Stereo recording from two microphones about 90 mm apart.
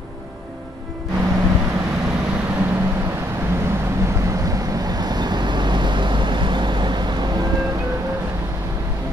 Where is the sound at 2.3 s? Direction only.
20° right (ahead or behind); by 8.2 s 40° right (ahead or behind).